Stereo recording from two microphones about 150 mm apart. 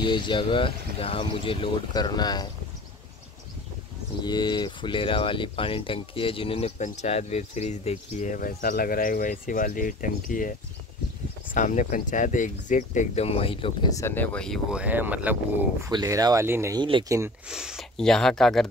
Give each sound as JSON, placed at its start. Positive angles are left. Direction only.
{"t": 0.0, "sound": "speech", "side_deg": 30}
{"t": 4.2, "sound": "speech", "side_deg": 30}
{"t": 11.5, "sound": "speech", "side_deg": 55}
{"t": 14.7, "sound": "speech", "side_deg": -10}
{"t": 15.9, "sound": "speech", "side_deg": -25}
{"t": 16.7, "sound": "speech", "side_deg": -35}
{"t": 17.5, "sound": "speech", "side_deg": -5}